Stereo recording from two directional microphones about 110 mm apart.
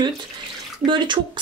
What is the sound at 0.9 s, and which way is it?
Speech, 45° right (ahead or behind).